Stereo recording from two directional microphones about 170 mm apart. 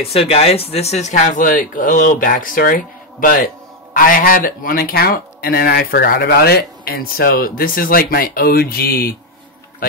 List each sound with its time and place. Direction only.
0.1 s speech: 35° left (ahead or behind); by 9.1 s 65° left (ahead or behind)